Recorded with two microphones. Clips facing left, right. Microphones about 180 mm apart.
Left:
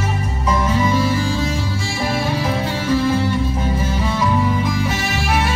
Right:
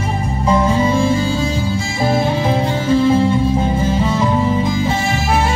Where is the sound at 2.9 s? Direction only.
25° right (ahead or behind).